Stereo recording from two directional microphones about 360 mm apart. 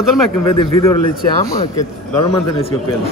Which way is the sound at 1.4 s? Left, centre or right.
Centre.